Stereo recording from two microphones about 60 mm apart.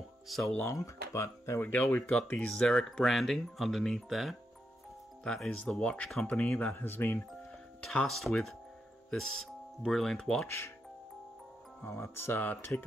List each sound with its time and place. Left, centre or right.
0.3 s speech: centre
0.7 s speech: left
1.6 s speech: left
2.3 s speech: centre
5.2 s speech: centre
6.6 s speech: left
7.8 s speech: centre
11.8 s speech: left
12.4 s speech: left